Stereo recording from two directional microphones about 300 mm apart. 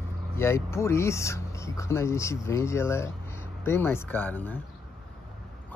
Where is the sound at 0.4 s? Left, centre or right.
Centre.